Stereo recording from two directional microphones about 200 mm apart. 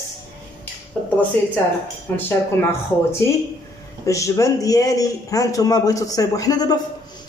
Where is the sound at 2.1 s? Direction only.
10° left (ahead or behind).